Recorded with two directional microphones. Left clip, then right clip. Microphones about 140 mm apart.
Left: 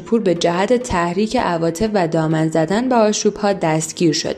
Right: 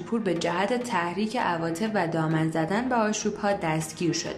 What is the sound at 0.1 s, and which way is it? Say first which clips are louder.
A woman's voice: left 11 dB; 25° left (ahead or behind).